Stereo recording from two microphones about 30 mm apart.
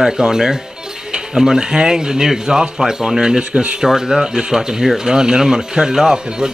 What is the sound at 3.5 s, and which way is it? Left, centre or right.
Speech, right.